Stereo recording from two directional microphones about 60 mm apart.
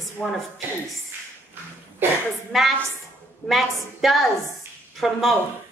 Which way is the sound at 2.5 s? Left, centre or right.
Centre.